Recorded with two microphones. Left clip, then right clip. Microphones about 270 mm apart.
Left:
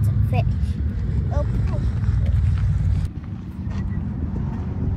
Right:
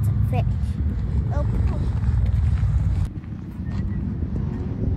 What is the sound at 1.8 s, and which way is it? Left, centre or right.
Vehicle, right.